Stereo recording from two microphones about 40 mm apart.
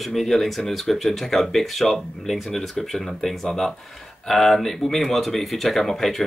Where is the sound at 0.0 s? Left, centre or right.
Centre.